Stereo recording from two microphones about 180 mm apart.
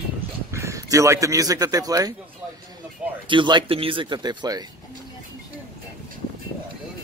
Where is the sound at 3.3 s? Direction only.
25° right (ahead or behind).